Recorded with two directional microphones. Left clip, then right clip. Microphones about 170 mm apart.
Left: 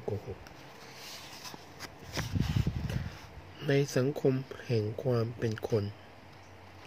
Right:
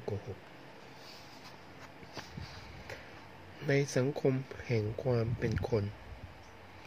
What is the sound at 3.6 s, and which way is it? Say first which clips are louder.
Speech: left 2 dB; 20° left (ahead or behind).